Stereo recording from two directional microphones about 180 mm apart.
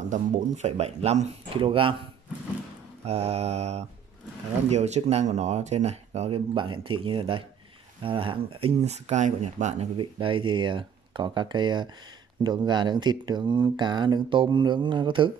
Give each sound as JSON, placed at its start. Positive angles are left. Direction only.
{"t": 0.1, "sound": "speech", "side_deg": -40}
{"t": 3.1, "sound": "speech", "side_deg": -35}
{"t": 10.1, "sound": "speech", "side_deg": -25}